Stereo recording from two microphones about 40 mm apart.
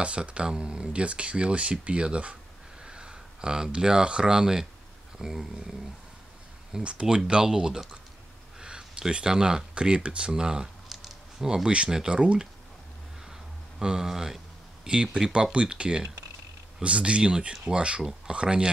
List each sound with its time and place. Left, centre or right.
0.0 s speech: right; by 5.7 s centre
6.8 s speech: right
10.9 s a sound: centre
11.4 s speech: centre
13.3 s a sound: centre
14.9 s speech: centre